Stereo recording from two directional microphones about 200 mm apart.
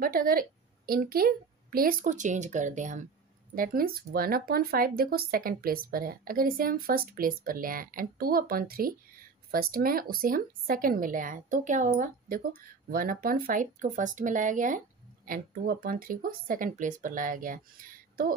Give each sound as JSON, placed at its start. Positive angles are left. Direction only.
{"t": 0.0, "sound": "speech", "side_deg": -45}